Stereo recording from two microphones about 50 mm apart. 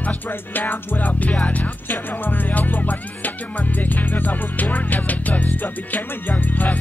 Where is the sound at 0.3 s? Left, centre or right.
Left.